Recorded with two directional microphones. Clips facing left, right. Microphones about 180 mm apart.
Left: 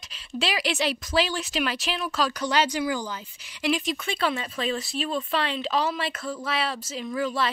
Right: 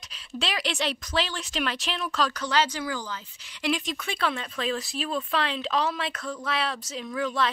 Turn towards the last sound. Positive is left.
turn(degrees=5)  # may be behind; listen again after turning